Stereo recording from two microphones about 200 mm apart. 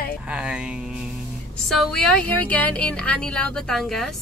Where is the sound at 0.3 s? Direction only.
5° right (ahead or behind).